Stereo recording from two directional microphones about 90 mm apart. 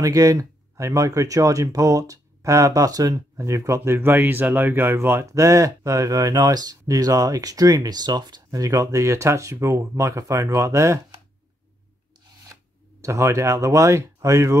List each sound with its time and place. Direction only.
0.0 s speech: 40° right (ahead or behind)
12.5 s a sound: 30° right (ahead or behind)
13.0 s speech: 35° right (ahead or behind)